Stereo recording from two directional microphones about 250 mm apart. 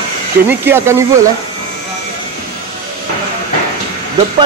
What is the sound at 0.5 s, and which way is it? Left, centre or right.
Speech, centre.